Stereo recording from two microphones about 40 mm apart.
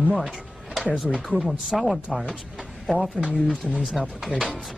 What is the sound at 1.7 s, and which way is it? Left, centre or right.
Speech, centre.